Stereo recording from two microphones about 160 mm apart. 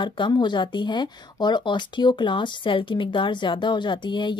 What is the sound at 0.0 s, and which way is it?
A woman's voice, 30° left (ahead or behind).